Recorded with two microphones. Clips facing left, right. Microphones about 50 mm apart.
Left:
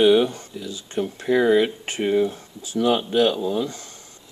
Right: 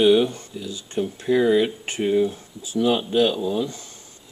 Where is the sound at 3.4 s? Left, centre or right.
Left.